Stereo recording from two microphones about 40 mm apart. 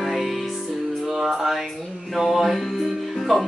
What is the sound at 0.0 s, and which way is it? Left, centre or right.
Music, centre.